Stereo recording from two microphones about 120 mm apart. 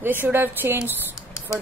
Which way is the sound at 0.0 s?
15° right (ahead or behind).